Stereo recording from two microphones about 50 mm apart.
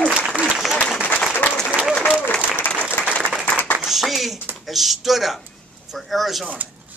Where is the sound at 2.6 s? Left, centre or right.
Left.